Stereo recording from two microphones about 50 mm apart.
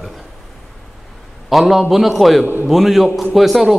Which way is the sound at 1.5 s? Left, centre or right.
Centre.